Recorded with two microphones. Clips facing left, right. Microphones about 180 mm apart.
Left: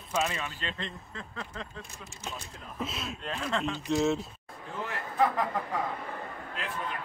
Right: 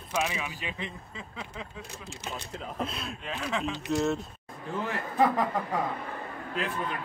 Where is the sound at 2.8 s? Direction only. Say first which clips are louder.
Left 1 dB; centre (ahead or behind).